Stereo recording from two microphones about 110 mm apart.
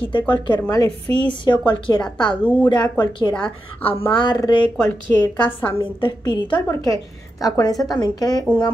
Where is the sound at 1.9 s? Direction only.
35° left (ahead or behind).